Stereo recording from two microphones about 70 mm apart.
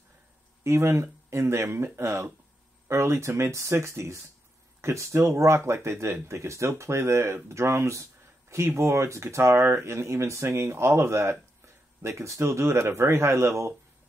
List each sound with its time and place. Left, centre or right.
0.7 s speech: right